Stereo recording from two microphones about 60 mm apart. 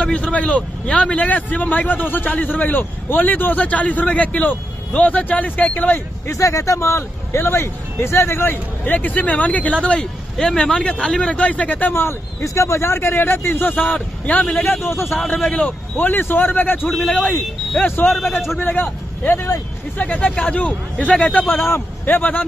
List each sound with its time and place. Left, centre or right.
0.0 s a man's voice: centre
1.3 s a man's voice: left
6.2 s speech: left
11.9 s speech: left
12.4 s a man's voice: left
14.6 s a man's voice: left
15.5 s a man's voice: left
20.0 s a man's voice: left